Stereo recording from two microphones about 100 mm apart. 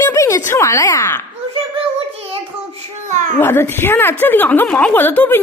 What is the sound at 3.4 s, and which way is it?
A woman's voice, 20° left (ahead or behind).